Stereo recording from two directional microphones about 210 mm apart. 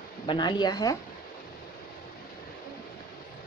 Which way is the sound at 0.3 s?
20° left (ahead or behind).